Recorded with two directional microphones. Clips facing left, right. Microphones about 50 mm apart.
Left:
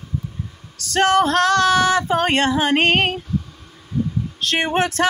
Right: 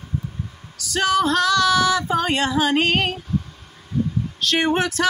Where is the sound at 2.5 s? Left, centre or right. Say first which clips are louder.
Left 2 dB; left.